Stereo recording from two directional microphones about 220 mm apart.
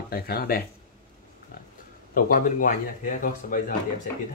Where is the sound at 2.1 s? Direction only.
40° left (ahead or behind).